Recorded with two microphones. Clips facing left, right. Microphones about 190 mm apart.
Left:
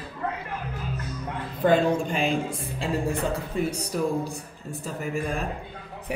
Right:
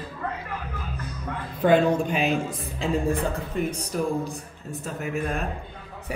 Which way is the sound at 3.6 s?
35° left (ahead or behind).